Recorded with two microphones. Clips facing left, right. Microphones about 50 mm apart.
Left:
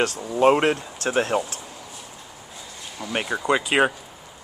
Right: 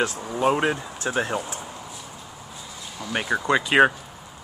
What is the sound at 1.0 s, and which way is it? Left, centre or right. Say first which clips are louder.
Speech: left 2 dB; left.